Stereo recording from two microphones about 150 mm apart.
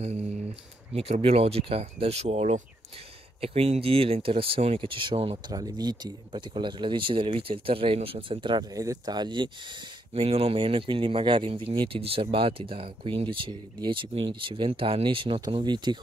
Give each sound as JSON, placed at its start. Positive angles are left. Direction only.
{"t": 0.0, "sound": "speech", "side_deg": -45}
{"t": 10.1, "sound": "speech", "side_deg": -40}